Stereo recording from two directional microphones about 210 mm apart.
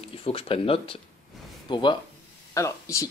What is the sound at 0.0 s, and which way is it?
Speech, 25° left (ahead or behind).